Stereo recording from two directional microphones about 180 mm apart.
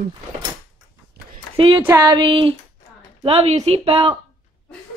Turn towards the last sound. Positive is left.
turn(degrees=-30)  # may be behind; listen again after turning